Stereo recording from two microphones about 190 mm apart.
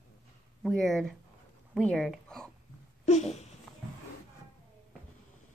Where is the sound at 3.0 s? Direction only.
35° left (ahead or behind).